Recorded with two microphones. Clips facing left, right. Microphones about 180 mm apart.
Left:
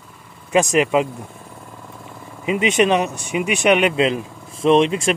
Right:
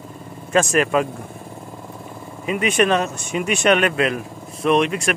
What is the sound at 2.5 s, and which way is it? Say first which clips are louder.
Speech: left 2 dB; 20° left (ahead or behind).